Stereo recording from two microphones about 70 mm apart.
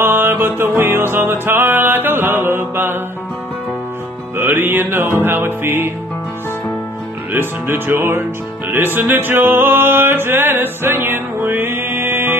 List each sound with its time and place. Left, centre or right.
0.0 s music: right
4.4 s music: right
7.3 s music: right